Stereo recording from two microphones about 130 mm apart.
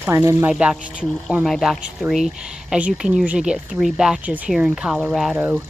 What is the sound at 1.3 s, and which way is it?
Speech, centre (ahead or behind).